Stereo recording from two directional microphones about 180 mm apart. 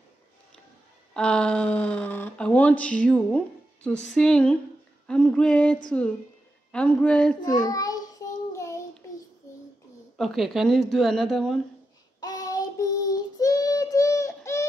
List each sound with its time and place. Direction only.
1.1 s speech: 5° left (ahead or behind)
7.4 s child singing: 20° left (ahead or behind)
10.1 s speech: centre (ahead or behind)
12.2 s child singing: 20° left (ahead or behind)